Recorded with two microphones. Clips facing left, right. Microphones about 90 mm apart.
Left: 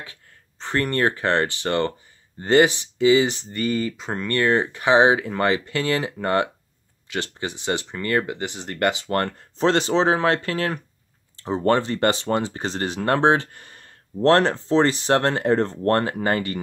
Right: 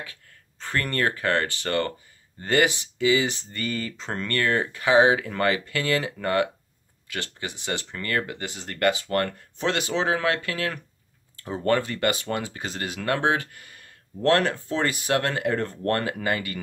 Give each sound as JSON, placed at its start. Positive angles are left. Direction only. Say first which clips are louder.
{"t": 0.0, "sound": "speech", "louder": "right 1 dB", "side_deg": 25}
{"t": 3.9, "sound": "speech", "louder": "left 3 dB", "side_deg": 10}
{"t": 4.3, "sound": "speech", "louder": "left 5 dB", "side_deg": 20}